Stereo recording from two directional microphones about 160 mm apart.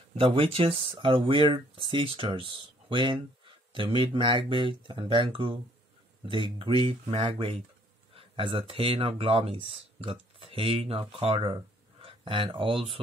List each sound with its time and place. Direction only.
0.1 s speech: 35° right (ahead or behind)